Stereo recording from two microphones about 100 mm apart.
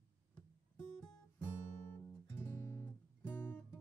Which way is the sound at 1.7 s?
20° left (ahead or behind).